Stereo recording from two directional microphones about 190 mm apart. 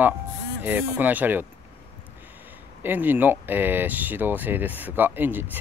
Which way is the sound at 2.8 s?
10° right (ahead or behind).